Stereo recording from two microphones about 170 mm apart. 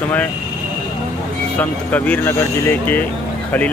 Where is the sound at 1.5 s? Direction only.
10° left (ahead or behind).